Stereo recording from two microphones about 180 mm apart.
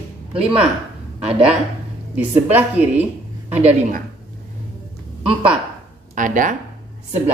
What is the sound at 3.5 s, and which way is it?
Speech, 35° right (ahead or behind).